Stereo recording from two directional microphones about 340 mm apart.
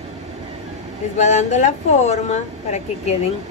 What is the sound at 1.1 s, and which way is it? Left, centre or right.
Speech, left.